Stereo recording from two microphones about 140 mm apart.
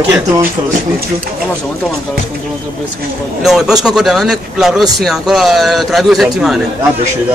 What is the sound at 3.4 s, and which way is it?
A man's voice, centre (ahead or behind).